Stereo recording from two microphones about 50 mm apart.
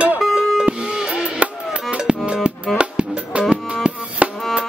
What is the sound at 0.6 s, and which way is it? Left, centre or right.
Music, centre.